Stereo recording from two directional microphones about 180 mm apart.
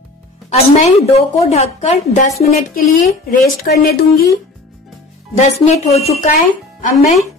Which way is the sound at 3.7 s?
55° left (ahead or behind).